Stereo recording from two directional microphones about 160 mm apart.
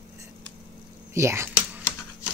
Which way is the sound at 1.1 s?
15° right (ahead or behind).